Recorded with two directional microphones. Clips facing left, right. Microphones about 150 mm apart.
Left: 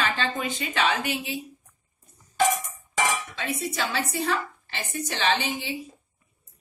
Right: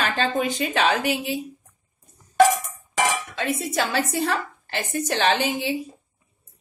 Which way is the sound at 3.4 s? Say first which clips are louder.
Right 5 dB; 45° right (ahead or behind).